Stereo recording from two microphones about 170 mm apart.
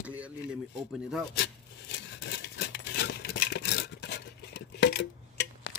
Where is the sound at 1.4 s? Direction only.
90° left.